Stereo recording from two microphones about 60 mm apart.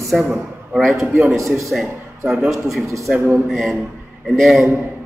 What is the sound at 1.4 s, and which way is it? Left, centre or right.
Speech, right.